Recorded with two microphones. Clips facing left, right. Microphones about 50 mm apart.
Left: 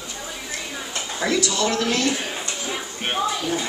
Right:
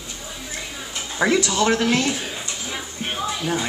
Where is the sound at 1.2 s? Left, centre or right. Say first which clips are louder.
Right 3 dB; right.